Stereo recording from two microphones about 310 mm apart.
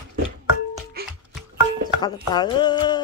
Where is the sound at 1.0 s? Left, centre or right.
Right.